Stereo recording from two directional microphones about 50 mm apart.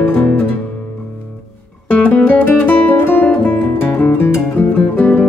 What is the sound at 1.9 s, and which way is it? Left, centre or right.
Music, left.